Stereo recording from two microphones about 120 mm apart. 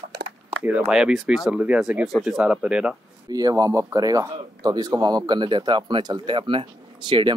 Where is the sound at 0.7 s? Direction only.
10° right (ahead or behind).